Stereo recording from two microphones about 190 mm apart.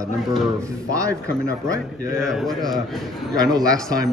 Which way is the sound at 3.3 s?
20° right (ahead or behind).